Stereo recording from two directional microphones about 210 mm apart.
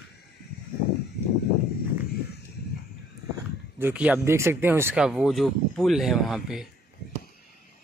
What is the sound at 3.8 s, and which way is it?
Speech, 5° right (ahead or behind).